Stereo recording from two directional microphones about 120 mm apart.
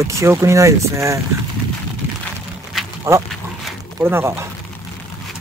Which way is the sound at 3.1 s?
25° right (ahead or behind).